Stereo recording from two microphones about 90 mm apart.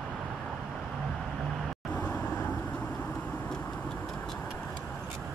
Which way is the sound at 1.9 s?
20° left (ahead or behind).